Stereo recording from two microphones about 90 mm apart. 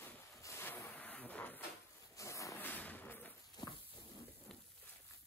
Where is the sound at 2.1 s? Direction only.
35° left (ahead or behind).